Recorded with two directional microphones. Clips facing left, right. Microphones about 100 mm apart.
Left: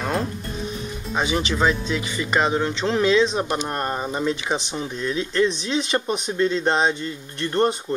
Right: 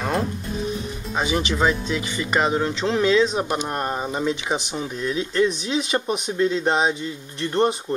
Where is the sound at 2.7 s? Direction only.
35° left (ahead or behind).